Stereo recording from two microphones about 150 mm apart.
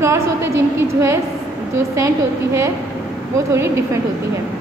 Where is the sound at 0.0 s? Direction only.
20° right (ahead or behind).